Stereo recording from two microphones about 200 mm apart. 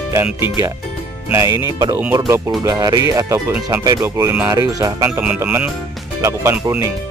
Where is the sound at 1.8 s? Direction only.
10° right (ahead or behind).